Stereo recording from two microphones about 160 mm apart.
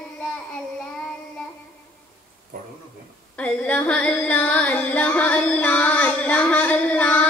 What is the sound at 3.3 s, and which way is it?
Music, 10° left (ahead or behind).